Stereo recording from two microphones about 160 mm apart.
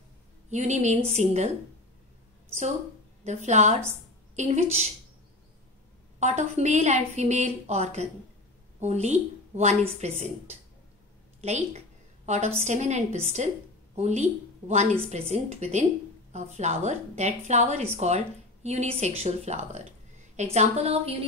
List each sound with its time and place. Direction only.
0.5 s a woman's voice: 45° right (ahead or behind)
3.3 s a woman's voice: 45° right (ahead or behind)
6.1 s a woman's voice: 45° right (ahead or behind)